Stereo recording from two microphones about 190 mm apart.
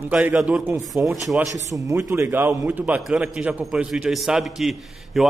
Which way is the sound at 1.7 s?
15° right (ahead or behind).